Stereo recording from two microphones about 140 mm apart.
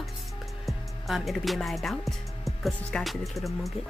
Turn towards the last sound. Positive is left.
turn(degrees=0)  # may be behind; listen again after turning